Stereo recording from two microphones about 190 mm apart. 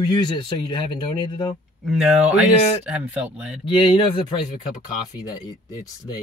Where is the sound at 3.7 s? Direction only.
25° left (ahead or behind).